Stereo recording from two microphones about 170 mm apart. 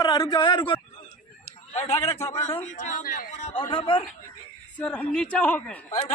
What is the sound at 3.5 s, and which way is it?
Speech, 30° left (ahead or behind).